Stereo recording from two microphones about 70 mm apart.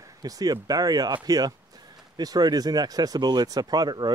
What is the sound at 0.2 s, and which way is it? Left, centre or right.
Speech, right.